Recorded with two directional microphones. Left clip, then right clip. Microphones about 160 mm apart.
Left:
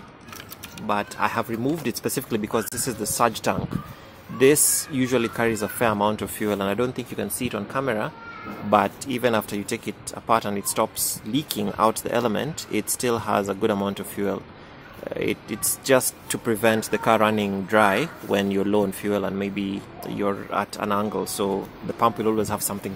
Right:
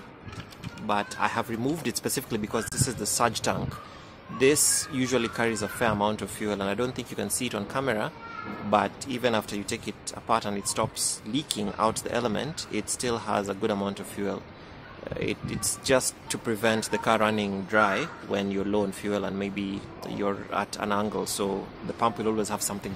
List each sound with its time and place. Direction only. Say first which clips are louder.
0.8 s speech: left 3 dB; 20° left (ahead or behind)
8.6 s speech: left 5 dB; 30° left (ahead or behind)